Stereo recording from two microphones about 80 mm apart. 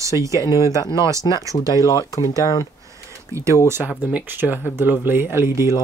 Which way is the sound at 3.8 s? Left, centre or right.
Centre.